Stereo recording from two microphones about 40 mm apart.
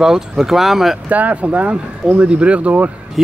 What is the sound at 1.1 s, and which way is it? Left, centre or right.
Speech, right.